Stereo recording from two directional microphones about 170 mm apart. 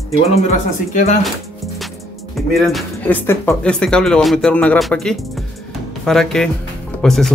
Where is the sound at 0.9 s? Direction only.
45° left (ahead or behind).